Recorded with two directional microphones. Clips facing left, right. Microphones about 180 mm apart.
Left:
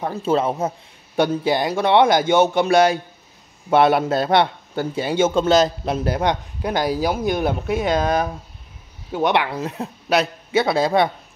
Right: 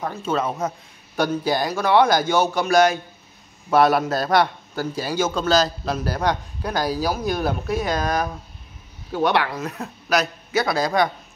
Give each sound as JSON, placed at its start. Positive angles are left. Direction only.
{"t": 0.0, "sound": "a man's voice", "side_deg": 30}